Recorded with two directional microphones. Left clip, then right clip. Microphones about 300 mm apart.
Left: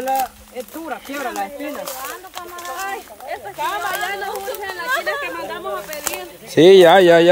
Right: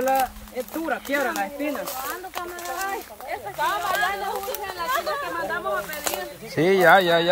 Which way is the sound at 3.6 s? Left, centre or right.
Left.